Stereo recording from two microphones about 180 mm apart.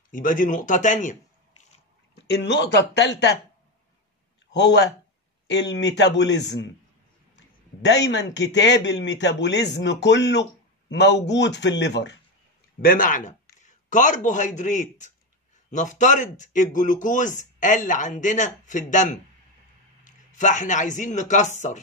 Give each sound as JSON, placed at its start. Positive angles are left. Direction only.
{"t": 0.1, "sound": "speech", "side_deg": 50}
{"t": 2.1, "sound": "a man's voice", "side_deg": 65}
{"t": 4.5, "sound": "a man's voice", "side_deg": 75}
{"t": 12.8, "sound": "a man's voice", "side_deg": 50}